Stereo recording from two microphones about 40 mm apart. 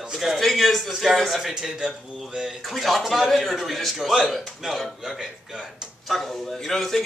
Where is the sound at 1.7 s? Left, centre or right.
Right; by 7.0 s centre.